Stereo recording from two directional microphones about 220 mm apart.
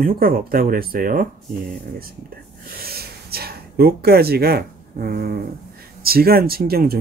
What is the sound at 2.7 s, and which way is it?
Speech, 45° right (ahead or behind).